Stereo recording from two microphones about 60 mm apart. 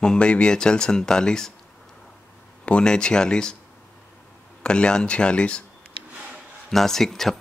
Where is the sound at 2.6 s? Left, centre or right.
Centre.